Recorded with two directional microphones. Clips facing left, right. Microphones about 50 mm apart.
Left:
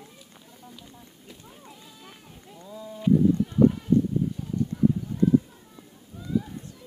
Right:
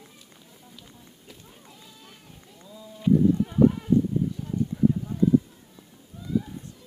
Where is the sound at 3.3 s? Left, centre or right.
Centre.